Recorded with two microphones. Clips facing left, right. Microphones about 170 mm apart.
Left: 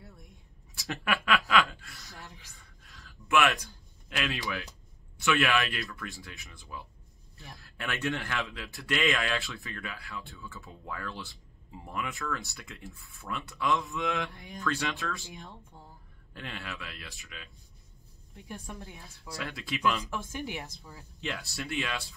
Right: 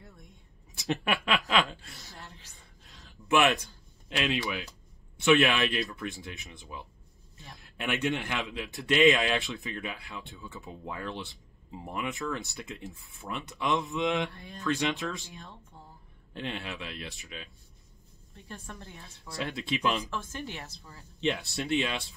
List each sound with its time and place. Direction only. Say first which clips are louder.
0.7 s speech: right 3 dB; 20° right (ahead or behind)
2.1 s a sound: left 2 dB; 15° left (ahead or behind)
2.8 s a sound: right 1 dB; 20° right (ahead or behind)
4.1 s speech: right 3 dB; 20° right (ahead or behind)
14.3 s speech: left 1 dB; 15° left (ahead or behind)
14.6 s speech: right 3 dB; 20° right (ahead or behind)
15.2 s speech: left 2 dB; 15° left (ahead or behind)
16.3 s speech: right 4 dB; 20° right (ahead or behind)
18.3 s speech: left 2 dB; 15° left (ahead or behind)
19.3 s speech: right 4 dB; 25° right (ahead or behind)
20.1 s speech: left 1 dB; 15° left (ahead or behind)
21.2 s speech: right 7 dB; 20° right (ahead or behind)